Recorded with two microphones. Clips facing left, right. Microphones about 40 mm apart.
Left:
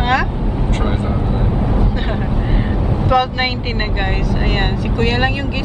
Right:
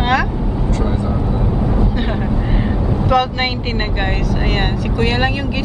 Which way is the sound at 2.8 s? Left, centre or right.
Centre.